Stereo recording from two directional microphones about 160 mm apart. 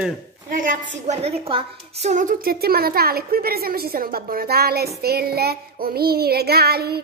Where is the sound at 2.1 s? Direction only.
55° right (ahead or behind); by 7.0 s 80° right.